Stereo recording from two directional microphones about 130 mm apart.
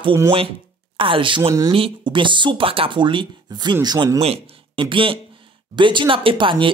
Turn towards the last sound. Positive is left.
turn(degrees=-40)  # may be behind; listen again after turning